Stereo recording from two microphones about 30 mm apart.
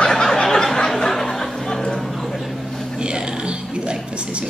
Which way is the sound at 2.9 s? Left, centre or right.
Right.